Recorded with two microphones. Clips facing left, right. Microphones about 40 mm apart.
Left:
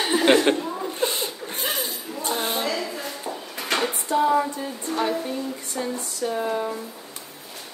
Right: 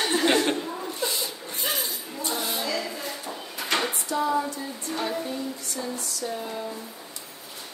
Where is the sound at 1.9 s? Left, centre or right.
Left.